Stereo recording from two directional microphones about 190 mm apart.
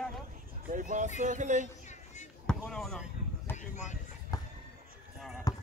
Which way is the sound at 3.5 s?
40° left (ahead or behind).